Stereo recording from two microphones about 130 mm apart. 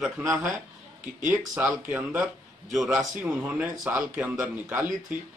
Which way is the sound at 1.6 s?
15° right (ahead or behind).